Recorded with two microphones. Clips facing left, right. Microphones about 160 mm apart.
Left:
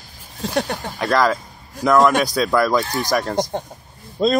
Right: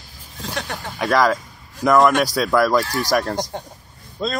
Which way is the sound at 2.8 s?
20° left (ahead or behind).